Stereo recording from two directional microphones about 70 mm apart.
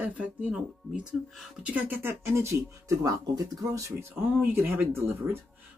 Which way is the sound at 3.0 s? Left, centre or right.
Right.